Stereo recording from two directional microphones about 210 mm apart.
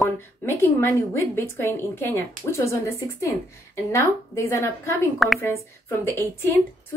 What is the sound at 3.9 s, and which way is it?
A woman's voice, 15° left (ahead or behind).